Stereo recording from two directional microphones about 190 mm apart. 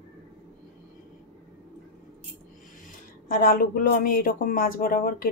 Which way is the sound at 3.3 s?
45° left (ahead or behind).